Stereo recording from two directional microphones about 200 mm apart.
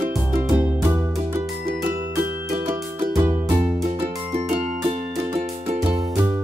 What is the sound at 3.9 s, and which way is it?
Music, 35° right (ahead or behind).